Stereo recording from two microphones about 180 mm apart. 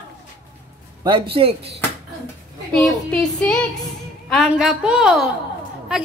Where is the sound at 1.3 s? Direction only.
30° right (ahead or behind).